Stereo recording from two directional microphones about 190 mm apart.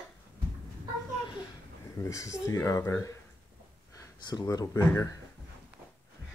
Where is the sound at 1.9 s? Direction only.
15° left (ahead or behind).